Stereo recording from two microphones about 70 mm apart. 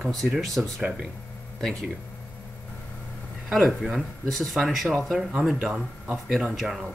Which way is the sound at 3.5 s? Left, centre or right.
Centre.